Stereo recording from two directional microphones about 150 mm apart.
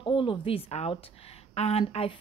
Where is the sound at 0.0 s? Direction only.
35° left (ahead or behind).